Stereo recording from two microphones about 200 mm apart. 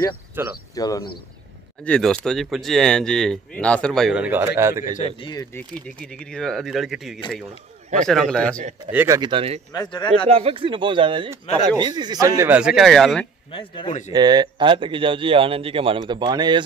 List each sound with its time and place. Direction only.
0.4 s speech: 10° right (ahead or behind)
0.7 s speech: 20° left (ahead or behind)
1.9 s speech: 5° left (ahead or behind); by 4.9 s 15° right (ahead or behind)
4.9 s a man's voice: 30° left (ahead or behind)
5.3 s speech: 15° left (ahead or behind)
5.9 s speech: 5° left (ahead or behind)
8.9 s speech: 15° right (ahead or behind)
9.7 s speech: 20° left (ahead or behind)
10.3 s speech: 25° right (ahead or behind); by 13.3 s centre (ahead or behind)
13.5 s speech: 25° left (ahead or behind)
14.1 s speech: 20° right (ahead or behind)